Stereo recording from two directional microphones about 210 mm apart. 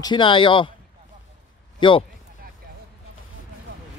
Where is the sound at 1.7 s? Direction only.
25° left (ahead or behind).